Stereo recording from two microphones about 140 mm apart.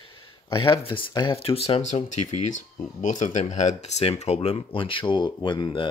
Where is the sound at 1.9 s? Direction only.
60° left (ahead or behind).